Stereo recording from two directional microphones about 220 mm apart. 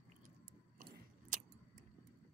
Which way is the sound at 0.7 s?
40° right (ahead or behind).